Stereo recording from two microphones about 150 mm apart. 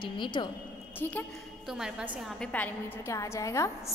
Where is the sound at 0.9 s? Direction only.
15° left (ahead or behind).